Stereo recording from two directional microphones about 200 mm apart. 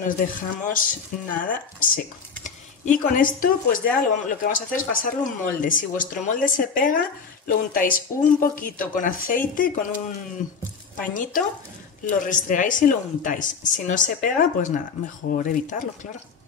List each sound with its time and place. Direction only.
0.0 s speech: 45° left (ahead or behind)
12.1 s speech: 40° left (ahead or behind)